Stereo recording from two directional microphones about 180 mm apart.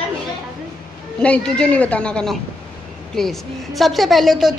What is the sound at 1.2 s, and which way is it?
A woman's voice, 5° left (ahead or behind).